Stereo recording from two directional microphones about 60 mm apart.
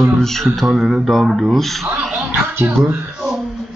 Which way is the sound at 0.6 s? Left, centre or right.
Centre.